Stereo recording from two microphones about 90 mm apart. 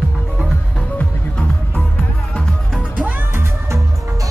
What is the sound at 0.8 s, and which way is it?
Music, 15° left (ahead or behind).